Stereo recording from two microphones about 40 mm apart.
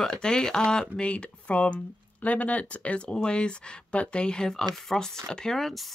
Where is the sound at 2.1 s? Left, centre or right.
Left; by 5.7 s centre.